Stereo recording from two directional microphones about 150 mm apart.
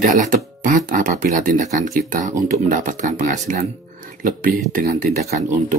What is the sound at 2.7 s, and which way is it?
Speech, 60° right (ahead or behind).